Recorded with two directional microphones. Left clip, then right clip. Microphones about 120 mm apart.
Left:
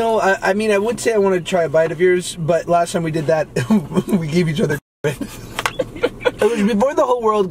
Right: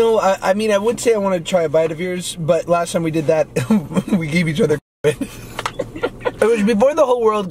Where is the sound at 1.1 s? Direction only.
15° right (ahead or behind).